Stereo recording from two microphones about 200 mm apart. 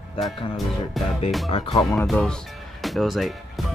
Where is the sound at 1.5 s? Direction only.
25° left (ahead or behind).